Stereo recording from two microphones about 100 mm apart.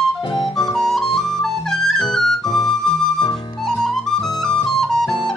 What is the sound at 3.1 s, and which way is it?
Music, 45° left (ahead or behind).